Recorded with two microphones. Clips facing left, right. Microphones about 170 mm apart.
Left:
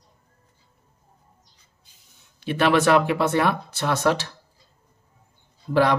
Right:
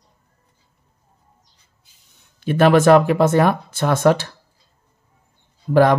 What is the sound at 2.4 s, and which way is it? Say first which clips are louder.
Speech: right 6 dB; 45° right (ahead or behind).